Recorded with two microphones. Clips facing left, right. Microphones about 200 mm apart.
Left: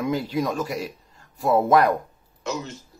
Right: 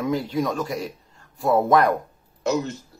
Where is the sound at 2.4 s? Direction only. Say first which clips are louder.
Right 7 dB; 50° right (ahead or behind).